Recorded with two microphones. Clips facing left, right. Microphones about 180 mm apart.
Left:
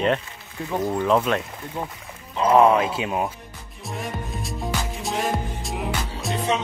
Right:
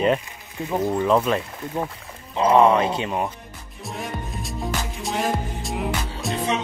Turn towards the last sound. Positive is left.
turn(degrees=0)  # may be behind; listen again after turning